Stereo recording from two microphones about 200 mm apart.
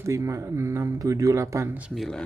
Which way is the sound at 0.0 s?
15° right (ahead or behind).